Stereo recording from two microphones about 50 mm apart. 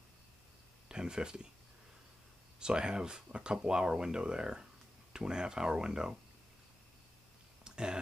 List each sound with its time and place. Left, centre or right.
0.8 s speech: centre
2.6 s speech: centre
7.6 s a sound: centre